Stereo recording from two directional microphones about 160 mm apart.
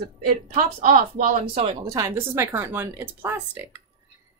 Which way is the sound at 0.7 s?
50° right (ahead or behind).